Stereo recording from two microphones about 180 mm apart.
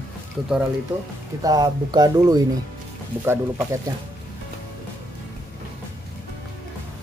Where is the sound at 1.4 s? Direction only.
20° right (ahead or behind).